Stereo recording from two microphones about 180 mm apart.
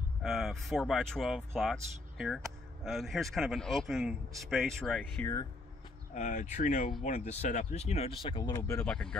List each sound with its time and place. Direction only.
0.2 s speech: centre (ahead or behind)
5.2 s speech: 15° left (ahead or behind)
6.1 s speech: 40° left (ahead or behind); by 9.1 s 5° left (ahead or behind)